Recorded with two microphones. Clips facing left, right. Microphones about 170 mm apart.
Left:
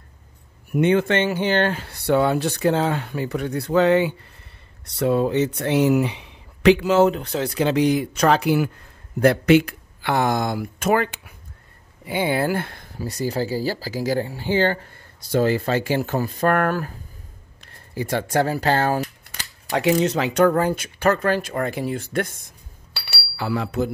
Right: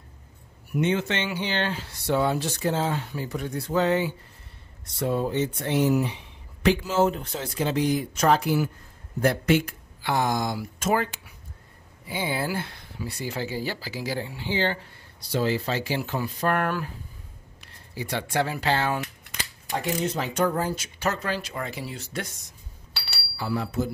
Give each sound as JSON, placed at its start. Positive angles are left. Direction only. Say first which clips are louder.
{"t": 0.7, "sound": "speech", "louder": "left 7 dB", "side_deg": 55}
{"t": 17.9, "sound": "speech", "louder": "left 5 dB", "side_deg": 45}
{"t": 19.7, "sound": "speech", "louder": "left 8 dB", "side_deg": 85}
{"t": 23.3, "sound": "speech", "louder": "left 3 dB", "side_deg": 80}